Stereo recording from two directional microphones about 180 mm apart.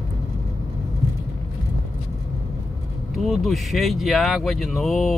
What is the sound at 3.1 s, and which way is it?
Speech, centre (ahead or behind).